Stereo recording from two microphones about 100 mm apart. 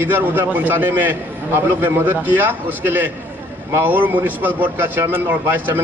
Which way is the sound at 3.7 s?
20° right (ahead or behind).